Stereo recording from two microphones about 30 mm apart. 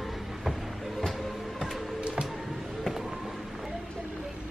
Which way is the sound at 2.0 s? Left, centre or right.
Right.